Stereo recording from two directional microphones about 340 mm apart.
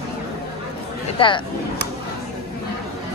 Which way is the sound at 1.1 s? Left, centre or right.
Centre.